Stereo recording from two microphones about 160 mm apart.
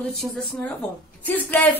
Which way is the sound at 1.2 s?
10° left (ahead or behind).